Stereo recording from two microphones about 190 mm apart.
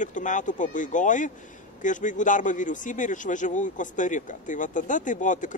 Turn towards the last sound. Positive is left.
turn(degrees=40)  # may be behind; listen again after turning